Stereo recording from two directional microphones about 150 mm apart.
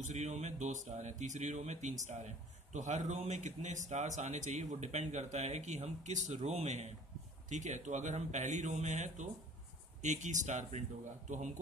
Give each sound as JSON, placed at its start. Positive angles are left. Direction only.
{"t": 0.0, "sound": "speech", "side_deg": -50}